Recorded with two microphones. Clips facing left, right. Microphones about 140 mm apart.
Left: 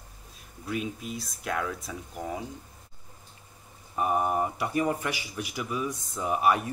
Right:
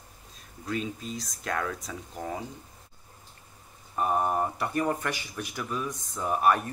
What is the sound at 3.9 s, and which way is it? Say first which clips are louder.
Speech: even; 10° left (ahead or behind).